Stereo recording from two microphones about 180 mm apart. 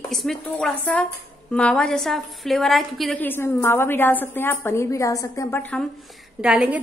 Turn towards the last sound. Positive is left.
turn(degrees=-5)  # may be behind; listen again after turning